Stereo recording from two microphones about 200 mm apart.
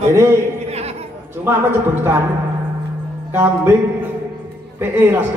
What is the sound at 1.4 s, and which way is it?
Speech, 10° right (ahead or behind).